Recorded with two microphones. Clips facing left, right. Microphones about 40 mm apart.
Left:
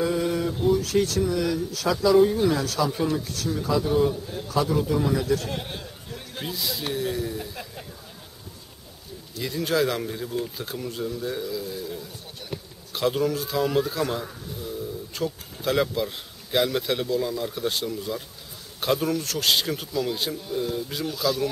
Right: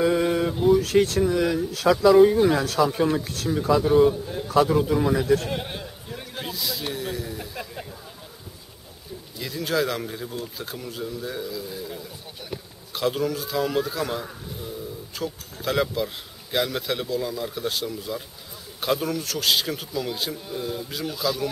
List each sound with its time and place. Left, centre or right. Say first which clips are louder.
0.0 s a sound: right 3 dB; right
0.7 s speech: right 3 dB; right
1.2 s speech: right 3 dB; right
2.1 s a man's voice: right 1 dB; centre
2.5 s a man's voice: right 2 dB; right
2.8 s speech: right 3 dB; right
3.8 s a man's voice: right 5 dB; centre
4.5 s a man's voice: right 4 dB; right
5.5 s speech: right 2 dB; centre
9.4 s speech: left 1 dB; centre